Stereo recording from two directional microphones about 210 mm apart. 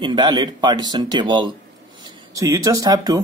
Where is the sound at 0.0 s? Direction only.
20° right (ahead or behind).